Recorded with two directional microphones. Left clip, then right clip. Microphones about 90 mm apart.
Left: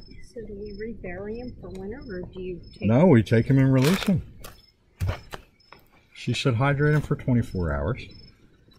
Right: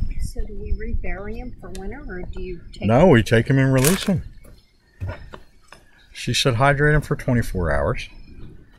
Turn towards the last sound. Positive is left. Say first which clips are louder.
# right 6 dB
turn(degrees=-30)  # may be behind; listen again after turning